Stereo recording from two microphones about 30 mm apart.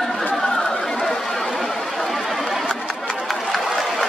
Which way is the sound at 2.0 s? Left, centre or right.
Centre.